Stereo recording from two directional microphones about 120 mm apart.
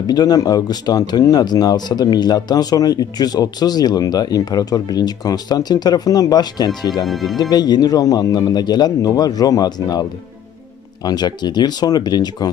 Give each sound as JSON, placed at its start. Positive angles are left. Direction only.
{"t": 0.0, "sound": "speech", "side_deg": 35}
{"t": 7.1, "sound": "speech", "side_deg": 0}
{"t": 7.3, "sound": "speech", "side_deg": 35}
{"t": 11.1, "sound": "speech", "side_deg": 35}